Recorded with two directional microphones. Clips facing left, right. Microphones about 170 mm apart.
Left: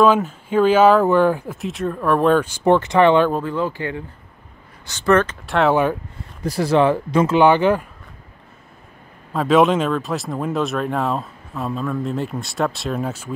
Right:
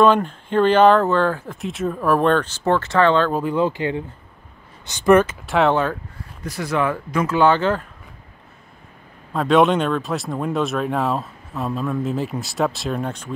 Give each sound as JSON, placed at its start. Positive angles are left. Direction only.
{"t": 0.0, "sound": "speech", "side_deg": 5}
{"t": 1.6, "sound": "speech", "side_deg": 0}
{"t": 2.3, "sound": "speech", "side_deg": 10}
{"t": 3.4, "sound": "speech", "side_deg": -20}
{"t": 6.4, "sound": "speech", "side_deg": 35}
{"t": 9.3, "sound": "speech", "side_deg": 0}